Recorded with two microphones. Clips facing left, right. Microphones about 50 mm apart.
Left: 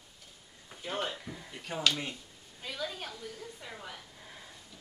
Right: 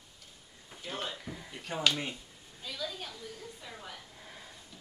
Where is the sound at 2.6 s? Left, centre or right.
Left.